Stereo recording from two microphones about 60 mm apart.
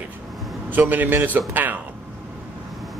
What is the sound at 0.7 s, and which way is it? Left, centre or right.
A man's voice, right.